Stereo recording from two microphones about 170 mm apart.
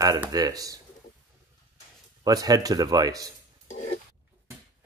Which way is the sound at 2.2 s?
20° right (ahead or behind).